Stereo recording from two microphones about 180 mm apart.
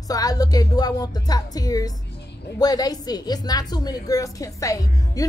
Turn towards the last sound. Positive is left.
turn(degrees=20)  # may be behind; listen again after turning